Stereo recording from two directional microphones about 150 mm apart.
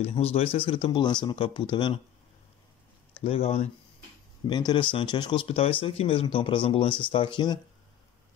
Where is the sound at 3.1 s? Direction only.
40° left (ahead or behind).